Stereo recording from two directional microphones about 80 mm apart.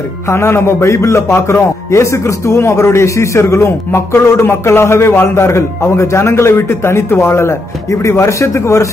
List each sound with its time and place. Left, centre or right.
0.3 s a man's voice: left